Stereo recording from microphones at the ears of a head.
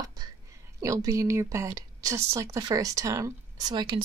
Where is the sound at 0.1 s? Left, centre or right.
Right.